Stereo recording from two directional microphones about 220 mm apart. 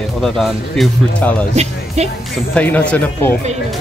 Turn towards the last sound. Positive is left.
turn(degrees=10)  # may be behind; listen again after turning